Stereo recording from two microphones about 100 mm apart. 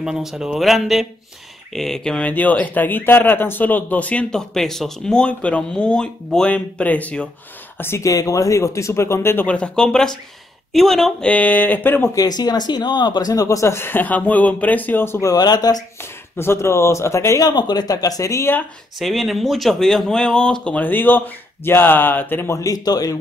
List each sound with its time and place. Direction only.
0.0 s speech: 5° right (ahead or behind); by 9.6 s 20° left (ahead or behind)
9.6 s speech: 5° left (ahead or behind)
12.2 s speech: 40° left (ahead or behind); by 15.3 s 25° left (ahead or behind)
15.3 s speech: 45° left (ahead or behind)
16.0 s speech: 25° left (ahead or behind)
18.9 s speech: centre (ahead or behind); by 22.6 s 20° left (ahead or behind)
22.6 s speech: 40° left (ahead or behind)